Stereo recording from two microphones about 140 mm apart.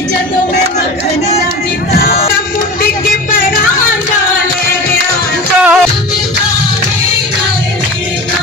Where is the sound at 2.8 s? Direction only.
85° left.